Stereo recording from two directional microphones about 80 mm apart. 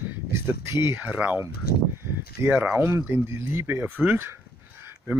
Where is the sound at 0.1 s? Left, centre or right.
Right.